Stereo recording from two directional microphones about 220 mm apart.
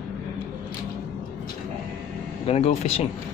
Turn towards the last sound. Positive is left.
turn(degrees=25)  # may be behind; listen again after turning